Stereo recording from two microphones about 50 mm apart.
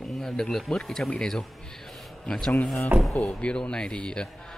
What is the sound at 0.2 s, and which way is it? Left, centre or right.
Speech, centre.